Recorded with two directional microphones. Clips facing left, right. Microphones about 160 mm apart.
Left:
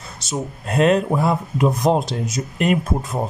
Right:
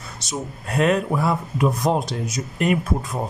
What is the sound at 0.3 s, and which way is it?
Speech, 25° left (ahead or behind).